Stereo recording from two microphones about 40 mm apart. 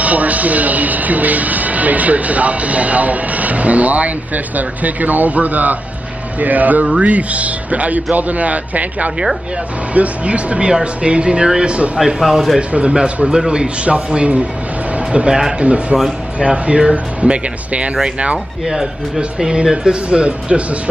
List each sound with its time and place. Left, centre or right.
0.0 s speech: right
12.2 s speech: centre
12.5 s speech: right
18.7 s speech: centre